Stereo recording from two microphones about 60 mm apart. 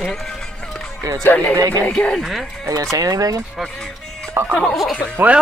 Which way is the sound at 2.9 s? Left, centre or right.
Right.